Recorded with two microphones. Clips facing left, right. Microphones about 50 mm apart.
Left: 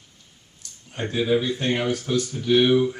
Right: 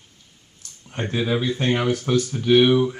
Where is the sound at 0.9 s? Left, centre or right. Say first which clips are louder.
Left 1 dB; right.